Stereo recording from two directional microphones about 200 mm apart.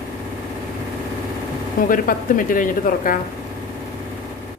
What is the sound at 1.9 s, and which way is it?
Speech, 45° left (ahead or behind).